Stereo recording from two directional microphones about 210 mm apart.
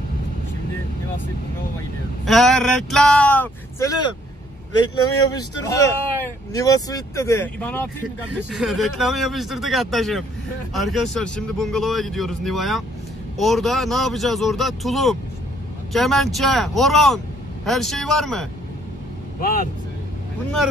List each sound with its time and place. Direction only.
2.2 s speech: centre (ahead or behind)
5.7 s speech: 15° left (ahead or behind)
8.4 s speech: 5° right (ahead or behind)
19.4 s speech: 40° left (ahead or behind)